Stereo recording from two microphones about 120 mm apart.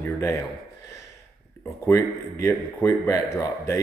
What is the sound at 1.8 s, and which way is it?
Speech, 25° left (ahead or behind).